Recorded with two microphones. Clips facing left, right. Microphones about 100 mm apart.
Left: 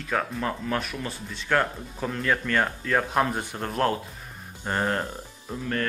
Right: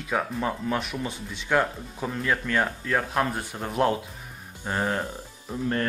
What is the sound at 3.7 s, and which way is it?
Speech, 15° right (ahead or behind).